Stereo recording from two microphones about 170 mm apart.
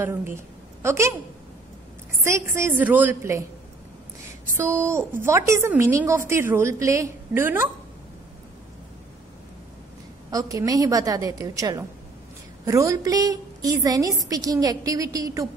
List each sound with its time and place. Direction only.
0.0 s a woman's voice: 15° right (ahead or behind)
2.5 s a woman's voice: 10° right (ahead or behind)
4.6 s a woman's voice: 15° right (ahead or behind)
10.3 s a woman's voice: 20° right (ahead or behind)